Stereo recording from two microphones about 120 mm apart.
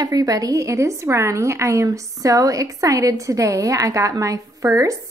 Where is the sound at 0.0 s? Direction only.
30° right (ahead or behind).